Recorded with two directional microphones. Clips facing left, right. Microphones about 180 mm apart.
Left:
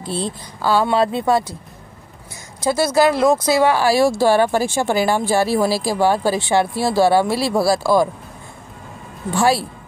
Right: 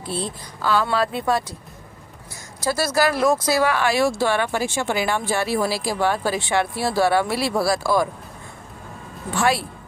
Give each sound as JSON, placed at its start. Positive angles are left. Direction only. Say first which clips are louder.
{"t": 0.1, "sound": "speech", "louder": "left 3 dB", "side_deg": 30}
{"t": 2.6, "sound": "speech", "louder": "left 5 dB", "side_deg": 20}
{"t": 9.3, "sound": "speech", "louder": "left 4 dB", "side_deg": 30}